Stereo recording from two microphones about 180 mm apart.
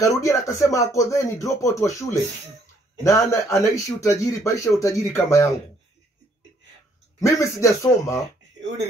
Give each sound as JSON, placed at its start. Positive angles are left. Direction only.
{"t": 0.0, "sound": "speech", "side_deg": 15}
{"t": 7.2, "sound": "speech", "side_deg": 15}